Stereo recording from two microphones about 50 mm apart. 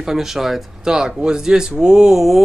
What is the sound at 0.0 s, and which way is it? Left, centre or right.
Speech, centre.